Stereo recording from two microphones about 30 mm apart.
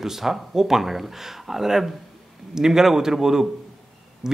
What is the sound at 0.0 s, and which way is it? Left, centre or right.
Speech, centre.